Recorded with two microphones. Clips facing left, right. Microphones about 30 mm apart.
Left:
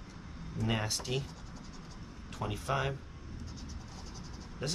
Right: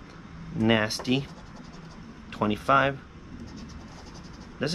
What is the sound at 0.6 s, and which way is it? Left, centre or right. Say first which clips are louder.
Speech: right 11 dB; right.